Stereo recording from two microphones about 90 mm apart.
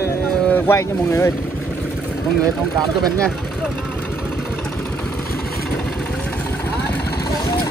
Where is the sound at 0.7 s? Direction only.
35° left (ahead or behind).